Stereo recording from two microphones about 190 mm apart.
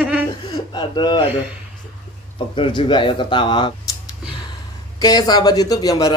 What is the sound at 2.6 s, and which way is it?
Speech, 25° left (ahead or behind).